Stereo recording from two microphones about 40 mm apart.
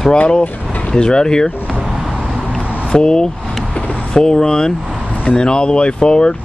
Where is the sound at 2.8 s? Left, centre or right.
Centre.